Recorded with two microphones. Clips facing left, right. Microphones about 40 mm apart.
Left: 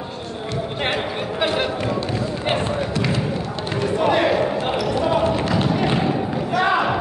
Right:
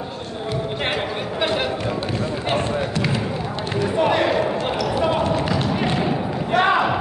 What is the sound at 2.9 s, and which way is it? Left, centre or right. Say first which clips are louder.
Basketball bounce: left 1 dB; centre.